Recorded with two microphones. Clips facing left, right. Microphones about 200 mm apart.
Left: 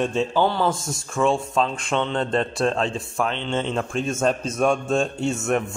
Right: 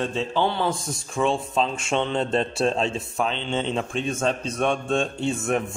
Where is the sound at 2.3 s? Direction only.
30° right (ahead or behind).